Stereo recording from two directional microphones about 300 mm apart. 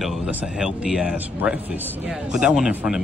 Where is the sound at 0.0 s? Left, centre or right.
Centre.